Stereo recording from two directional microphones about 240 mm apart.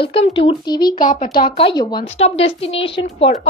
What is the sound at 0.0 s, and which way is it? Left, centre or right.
Speech, left.